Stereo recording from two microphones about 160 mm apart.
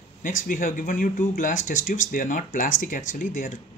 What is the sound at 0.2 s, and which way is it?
Speech, 55° left (ahead or behind).